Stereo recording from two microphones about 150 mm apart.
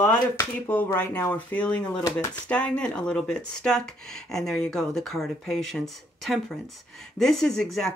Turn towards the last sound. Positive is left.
turn(degrees=0)  # may be behind; listen again after turning